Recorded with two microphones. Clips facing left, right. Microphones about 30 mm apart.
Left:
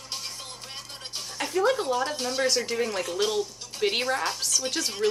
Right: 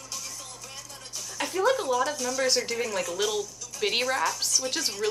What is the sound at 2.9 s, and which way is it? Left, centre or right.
Speech, centre.